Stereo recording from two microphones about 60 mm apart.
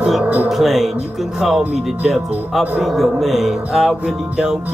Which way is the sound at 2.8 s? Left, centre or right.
Centre.